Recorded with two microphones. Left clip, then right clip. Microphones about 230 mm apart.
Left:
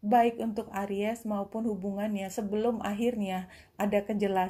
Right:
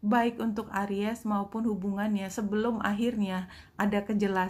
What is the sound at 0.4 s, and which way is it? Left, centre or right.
Speech, right.